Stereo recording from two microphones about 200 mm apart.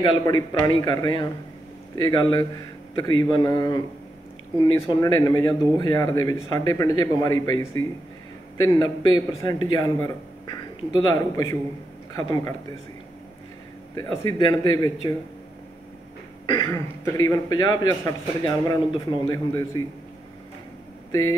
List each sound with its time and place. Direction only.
0.0 s a man's voice: 25° left (ahead or behind)
13.9 s a man's voice: 20° left (ahead or behind)
16.5 s a man's voice: 15° left (ahead or behind)
21.1 s speech: 20° left (ahead or behind)